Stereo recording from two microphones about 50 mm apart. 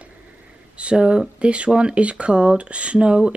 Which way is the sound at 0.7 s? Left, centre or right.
Right.